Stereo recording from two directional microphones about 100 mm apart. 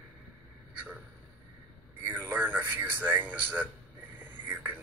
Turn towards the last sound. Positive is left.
turn(degrees=-20)  # may be behind; listen again after turning